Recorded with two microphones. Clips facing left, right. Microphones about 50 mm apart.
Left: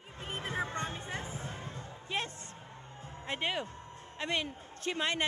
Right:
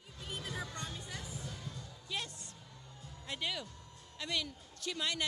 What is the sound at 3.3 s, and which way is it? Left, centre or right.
Speech, left.